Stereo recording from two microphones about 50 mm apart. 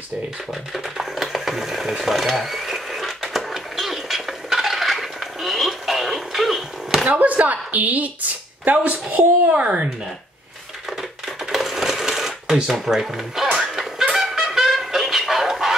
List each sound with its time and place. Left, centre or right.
0.7 s a sound: centre
7.1 s speech: right
9.5 s speech: right
10.9 s a sound: centre
12.6 s speech: centre
13.7 s music: centre